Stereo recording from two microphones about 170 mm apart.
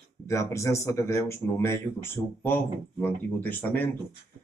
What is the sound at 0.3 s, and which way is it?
Speech, 15° left (ahead or behind).